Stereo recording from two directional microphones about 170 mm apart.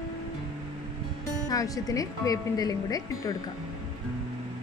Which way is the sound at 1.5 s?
20° left (ahead or behind).